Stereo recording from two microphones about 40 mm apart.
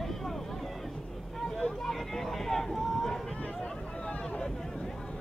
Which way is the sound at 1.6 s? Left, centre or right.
Centre.